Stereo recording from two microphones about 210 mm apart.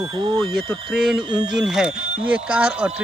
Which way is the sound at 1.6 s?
Centre (ahead or behind).